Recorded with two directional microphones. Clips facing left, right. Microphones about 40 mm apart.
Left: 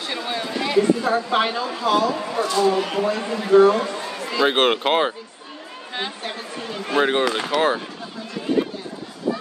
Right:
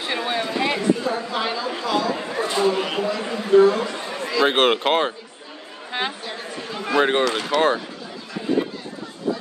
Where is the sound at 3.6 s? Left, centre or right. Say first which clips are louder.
Left 1 dB; left.